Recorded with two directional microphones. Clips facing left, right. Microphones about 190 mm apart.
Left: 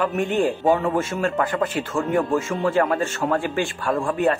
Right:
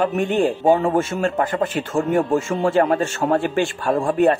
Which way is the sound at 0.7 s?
30° right (ahead or behind).